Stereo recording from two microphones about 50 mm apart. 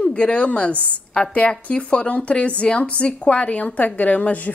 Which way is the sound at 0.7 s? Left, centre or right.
Right.